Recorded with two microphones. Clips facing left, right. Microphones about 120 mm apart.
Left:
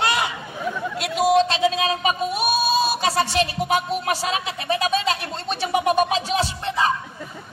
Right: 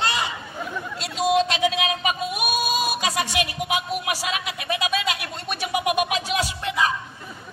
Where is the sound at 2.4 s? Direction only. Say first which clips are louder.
Left 4 dB; 15° right (ahead or behind).